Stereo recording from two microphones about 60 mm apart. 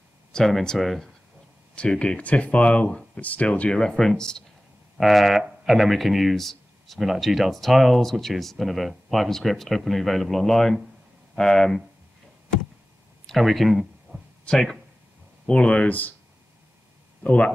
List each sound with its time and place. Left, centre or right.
0.3 s speech: centre
1.8 s speech: centre
3.8 s speech: centre
4.9 s speech: centre
13.3 s speech: centre
15.4 s speech: centre
17.2 s speech: left